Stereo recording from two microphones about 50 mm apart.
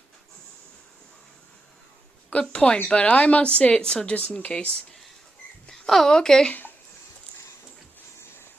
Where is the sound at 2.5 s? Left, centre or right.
Centre.